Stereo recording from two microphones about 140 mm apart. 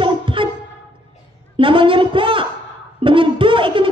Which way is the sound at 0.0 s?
40° right (ahead or behind).